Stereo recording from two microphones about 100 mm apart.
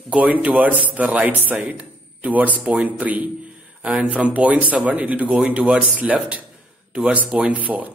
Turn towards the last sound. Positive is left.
turn(degrees=-15)  # may be behind; listen again after turning